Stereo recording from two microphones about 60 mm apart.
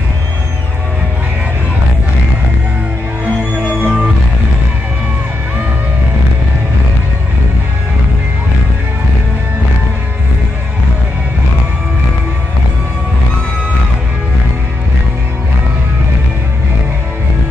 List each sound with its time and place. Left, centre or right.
3.6 s music: right